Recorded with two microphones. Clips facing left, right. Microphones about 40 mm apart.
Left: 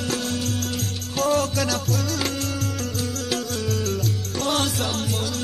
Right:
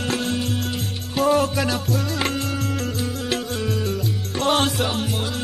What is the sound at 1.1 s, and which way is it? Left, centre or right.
Music, centre.